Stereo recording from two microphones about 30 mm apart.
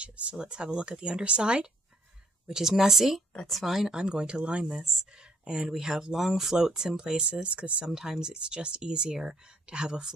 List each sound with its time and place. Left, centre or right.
0.0 s speech: right
2.5 s speech: centre
3.9 s speech: right
4.4 s speech: right
5.1 s speech: right
7.0 s speech: right
7.8 s speech: centre